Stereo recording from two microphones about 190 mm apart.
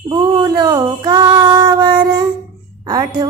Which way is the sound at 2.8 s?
20° right (ahead or behind).